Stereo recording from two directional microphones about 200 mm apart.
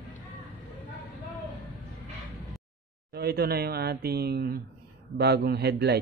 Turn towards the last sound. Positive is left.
turn(degrees=-55)  # may be behind; listen again after turning